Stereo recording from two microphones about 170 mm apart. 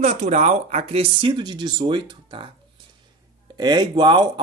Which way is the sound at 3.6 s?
25° right (ahead or behind).